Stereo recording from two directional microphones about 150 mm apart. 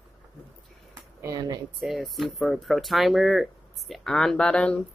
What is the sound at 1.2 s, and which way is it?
Speech, 25° right (ahead or behind).